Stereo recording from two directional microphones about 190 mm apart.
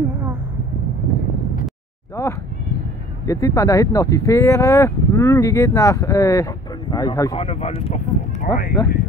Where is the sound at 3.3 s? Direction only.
15° left (ahead or behind).